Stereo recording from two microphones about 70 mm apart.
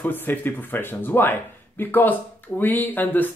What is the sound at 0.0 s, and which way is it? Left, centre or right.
Speech, left.